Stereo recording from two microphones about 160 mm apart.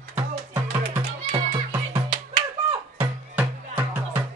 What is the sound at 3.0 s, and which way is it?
Music, 10° right (ahead or behind).